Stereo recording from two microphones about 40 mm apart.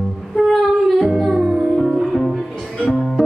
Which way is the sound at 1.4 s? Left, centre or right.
Centre.